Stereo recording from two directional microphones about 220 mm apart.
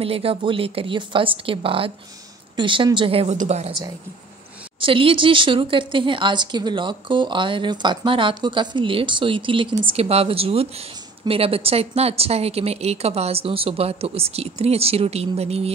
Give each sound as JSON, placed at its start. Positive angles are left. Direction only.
{"t": 0.0, "sound": "speech", "side_deg": -25}
{"t": 4.7, "sound": "speech", "side_deg": -25}